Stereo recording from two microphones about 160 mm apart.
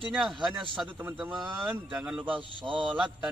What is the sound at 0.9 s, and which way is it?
Speech, 15° right (ahead or behind).